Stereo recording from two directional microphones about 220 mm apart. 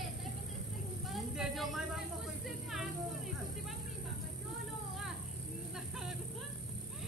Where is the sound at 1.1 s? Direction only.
Centre (ahead or behind).